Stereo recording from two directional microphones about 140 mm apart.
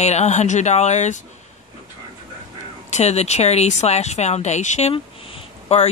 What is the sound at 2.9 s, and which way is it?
Speech, 50° left (ahead or behind).